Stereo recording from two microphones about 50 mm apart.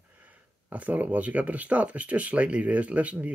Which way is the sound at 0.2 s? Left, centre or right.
Right.